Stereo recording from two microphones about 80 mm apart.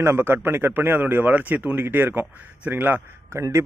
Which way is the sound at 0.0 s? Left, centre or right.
Right.